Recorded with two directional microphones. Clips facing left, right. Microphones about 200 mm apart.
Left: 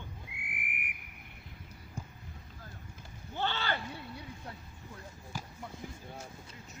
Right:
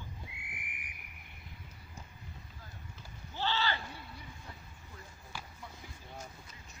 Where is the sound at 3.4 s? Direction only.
55° left (ahead or behind).